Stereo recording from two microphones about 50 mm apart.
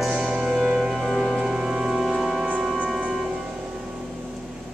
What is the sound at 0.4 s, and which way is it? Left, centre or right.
Music, centre.